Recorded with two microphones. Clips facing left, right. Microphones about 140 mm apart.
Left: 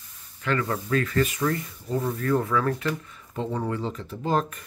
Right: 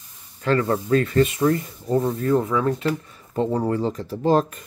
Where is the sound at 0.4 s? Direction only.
30° right (ahead or behind).